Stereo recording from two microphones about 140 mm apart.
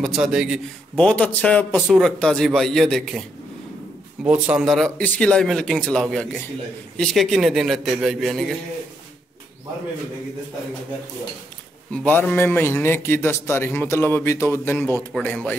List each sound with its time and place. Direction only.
0.0 s speech: 5° right (ahead or behind)
0.9 s a man's voice: 10° left (ahead or behind)
4.2 s speech: 10° right (ahead or behind)
11.9 s a man's voice: 10° left (ahead or behind)
15.1 s speech: 5° left (ahead or behind)